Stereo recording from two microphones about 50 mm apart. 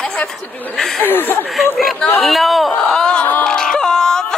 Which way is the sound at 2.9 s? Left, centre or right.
Centre.